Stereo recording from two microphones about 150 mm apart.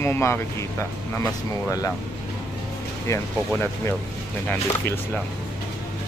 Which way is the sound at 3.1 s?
20° left (ahead or behind).